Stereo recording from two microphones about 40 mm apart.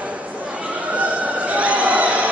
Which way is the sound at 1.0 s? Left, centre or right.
Right.